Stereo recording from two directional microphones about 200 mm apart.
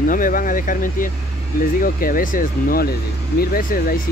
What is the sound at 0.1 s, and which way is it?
Speech, 45° left (ahead or behind).